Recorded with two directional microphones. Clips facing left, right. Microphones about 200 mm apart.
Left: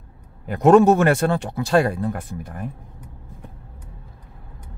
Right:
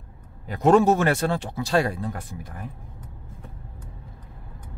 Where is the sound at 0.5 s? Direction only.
55° left (ahead or behind).